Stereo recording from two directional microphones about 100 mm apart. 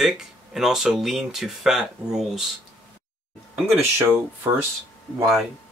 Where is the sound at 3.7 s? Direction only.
25° right (ahead or behind).